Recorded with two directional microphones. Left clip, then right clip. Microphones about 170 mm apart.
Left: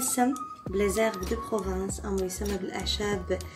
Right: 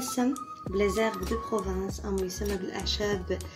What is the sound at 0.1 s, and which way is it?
Speech, 5° right (ahead or behind).